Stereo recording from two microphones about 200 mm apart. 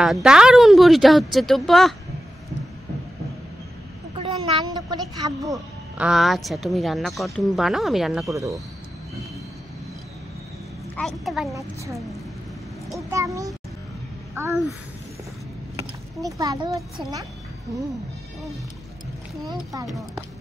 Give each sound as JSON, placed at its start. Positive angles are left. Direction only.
{"t": 0.0, "sound": "a woman's voice", "side_deg": -5}
{"t": 4.2, "sound": "a sound", "side_deg": -20}
{"t": 5.9, "sound": "a woman's voice", "side_deg": 0}
{"t": 11.0, "sound": "a woman's voice", "side_deg": 0}
{"t": 11.5, "sound": "a woman's voice", "side_deg": -15}
{"t": 13.1, "sound": "a woman's voice", "side_deg": -15}
{"t": 15.8, "sound": "a child's voice", "side_deg": -15}
{"t": 19.5, "sound": "a woman's voice", "side_deg": -15}
{"t": 19.9, "sound": "a woman's voice", "side_deg": 0}